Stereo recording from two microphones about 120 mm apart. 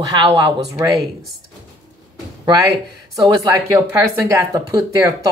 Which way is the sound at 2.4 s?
30° right (ahead or behind).